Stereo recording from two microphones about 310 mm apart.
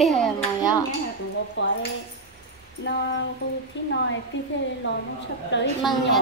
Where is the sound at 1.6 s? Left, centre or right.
Left.